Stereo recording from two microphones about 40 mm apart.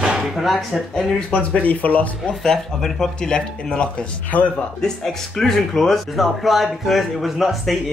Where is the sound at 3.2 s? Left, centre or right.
Left.